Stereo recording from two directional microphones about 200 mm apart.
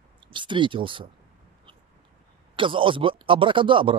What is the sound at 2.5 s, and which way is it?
Speech, 25° right (ahead or behind).